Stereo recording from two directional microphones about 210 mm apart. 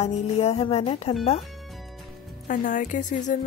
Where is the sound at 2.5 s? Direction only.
40° left (ahead or behind).